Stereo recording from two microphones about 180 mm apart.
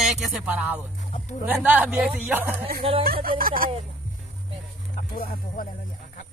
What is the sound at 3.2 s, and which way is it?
Speech, 50° right (ahead or behind).